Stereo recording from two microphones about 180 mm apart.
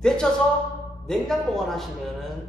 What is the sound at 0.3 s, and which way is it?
A man's voice, 5° left (ahead or behind).